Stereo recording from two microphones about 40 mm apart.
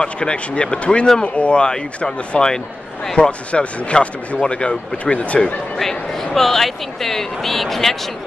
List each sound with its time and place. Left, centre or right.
0.0 s speech: left
3.2 s speech: left
5.8 s speech: centre